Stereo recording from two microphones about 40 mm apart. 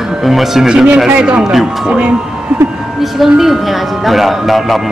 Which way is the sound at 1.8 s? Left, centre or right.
Right.